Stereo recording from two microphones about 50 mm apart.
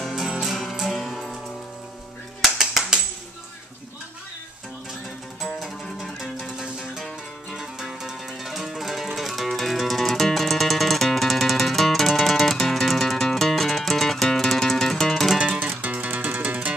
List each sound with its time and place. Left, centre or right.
0.1 s music: centre
2.4 s a sound: centre
5.6 s music: centre
7.5 s music: centre
15.4 s music: right
15.8 s music: right